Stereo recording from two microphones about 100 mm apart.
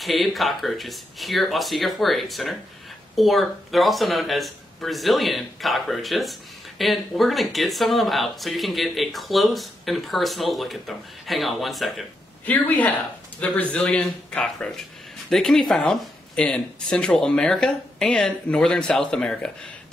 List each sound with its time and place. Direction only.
0.0 s speech: centre (ahead or behind)
12.4 s speech: 15° left (ahead or behind)